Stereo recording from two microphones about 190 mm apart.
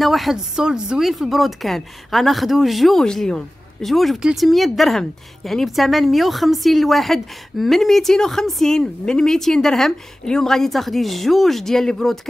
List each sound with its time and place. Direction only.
0.0 s speech: centre (ahead or behind)